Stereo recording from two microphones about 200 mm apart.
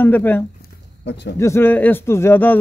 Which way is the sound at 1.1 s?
60° left (ahead or behind).